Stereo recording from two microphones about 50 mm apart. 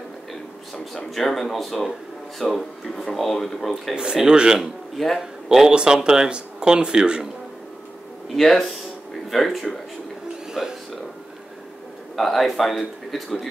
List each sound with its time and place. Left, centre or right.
1.1 s speech: centre
3.9 s speech: centre
4.9 s speech: centre
8.4 s speech: centre
10.5 s music: centre
12.2 s speech: centre